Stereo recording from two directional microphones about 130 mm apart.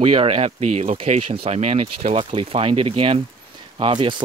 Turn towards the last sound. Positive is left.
turn(degrees=-40)  # may be behind; listen again after turning